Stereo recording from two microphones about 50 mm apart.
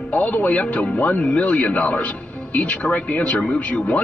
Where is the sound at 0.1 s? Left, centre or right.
Left.